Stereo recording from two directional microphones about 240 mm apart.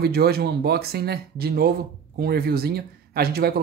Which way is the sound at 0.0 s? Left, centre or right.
Right.